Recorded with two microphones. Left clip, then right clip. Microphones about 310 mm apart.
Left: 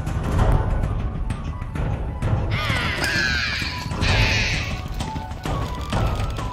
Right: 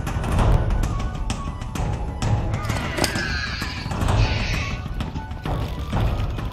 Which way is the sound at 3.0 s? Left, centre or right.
Centre.